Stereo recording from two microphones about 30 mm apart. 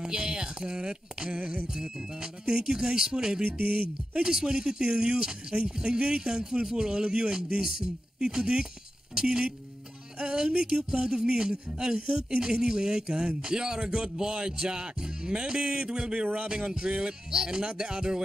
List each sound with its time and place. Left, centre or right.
0.0 s speech: right
1.3 s music: right
2.6 s speech: right
3.6 s a man's voice: right
4.2 s a man's voice: right
9.1 s music: right
10.1 s a man's voice: right